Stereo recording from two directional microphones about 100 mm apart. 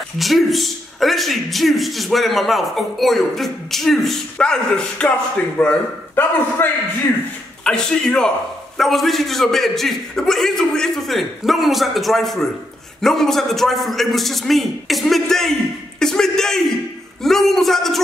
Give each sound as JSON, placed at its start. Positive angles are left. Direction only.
{"t": 0.2, "sound": "a man's voice", "side_deg": 0}
{"t": 16.0, "sound": "a sound", "side_deg": 5}
{"t": 17.2, "sound": "a man's voice", "side_deg": 5}